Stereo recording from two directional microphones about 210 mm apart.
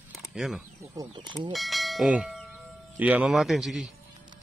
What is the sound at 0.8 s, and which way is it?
Speech, 15° right (ahead or behind).